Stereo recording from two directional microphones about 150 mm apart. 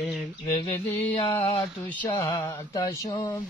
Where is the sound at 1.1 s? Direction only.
40° left (ahead or behind).